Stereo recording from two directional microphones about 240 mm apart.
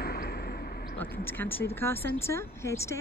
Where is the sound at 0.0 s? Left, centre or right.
Left.